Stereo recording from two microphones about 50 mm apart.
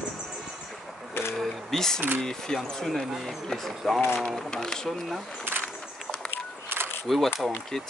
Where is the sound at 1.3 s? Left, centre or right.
Centre.